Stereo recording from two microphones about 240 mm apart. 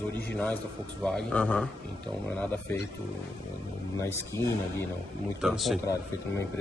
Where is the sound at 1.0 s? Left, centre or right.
Centre.